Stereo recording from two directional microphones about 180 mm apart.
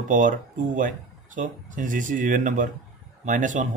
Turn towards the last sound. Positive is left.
turn(degrees=-45)  # may be behind; listen again after turning